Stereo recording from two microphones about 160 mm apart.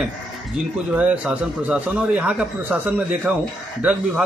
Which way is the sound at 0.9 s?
10° right (ahead or behind).